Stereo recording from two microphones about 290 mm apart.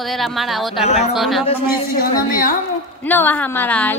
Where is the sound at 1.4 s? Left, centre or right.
Centre.